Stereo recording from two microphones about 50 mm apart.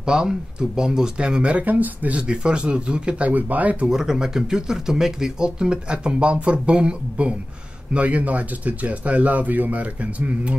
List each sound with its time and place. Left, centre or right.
0.0 s speech: centre; by 2.1 s right
2.1 s speech: right
3.9 s speech: centre; by 10.6 s right